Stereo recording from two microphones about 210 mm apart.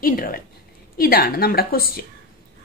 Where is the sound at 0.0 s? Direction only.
45° left (ahead or behind).